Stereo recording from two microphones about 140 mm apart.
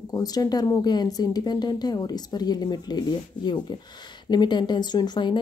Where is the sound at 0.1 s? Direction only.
25° left (ahead or behind).